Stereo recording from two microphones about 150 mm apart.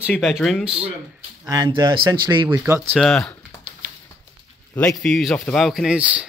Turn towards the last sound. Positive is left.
turn(degrees=-10)  # may be behind; listen again after turning